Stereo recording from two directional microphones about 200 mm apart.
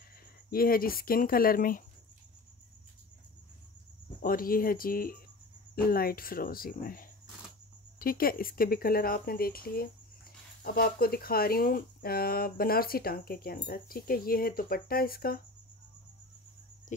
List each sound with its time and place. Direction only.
0.5 s speech: 45° left (ahead or behind)
4.2 s speech: 45° left (ahead or behind)